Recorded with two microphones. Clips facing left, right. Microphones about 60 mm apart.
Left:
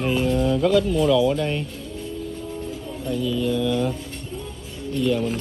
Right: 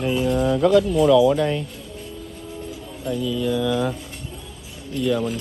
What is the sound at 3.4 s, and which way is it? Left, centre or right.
Speech, right.